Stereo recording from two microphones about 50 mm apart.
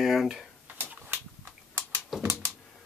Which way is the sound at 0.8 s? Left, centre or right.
Right.